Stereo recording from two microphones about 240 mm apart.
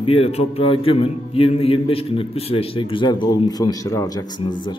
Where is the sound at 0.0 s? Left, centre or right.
Left.